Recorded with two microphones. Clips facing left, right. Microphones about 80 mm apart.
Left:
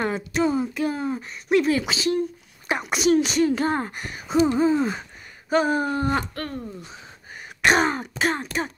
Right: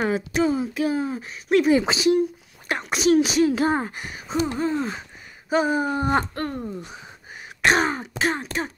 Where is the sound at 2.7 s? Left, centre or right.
Centre.